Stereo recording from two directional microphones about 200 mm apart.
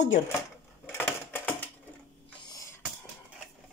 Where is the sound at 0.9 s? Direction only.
10° left (ahead or behind).